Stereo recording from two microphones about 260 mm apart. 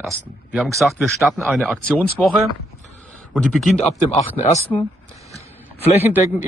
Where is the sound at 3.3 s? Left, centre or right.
Centre.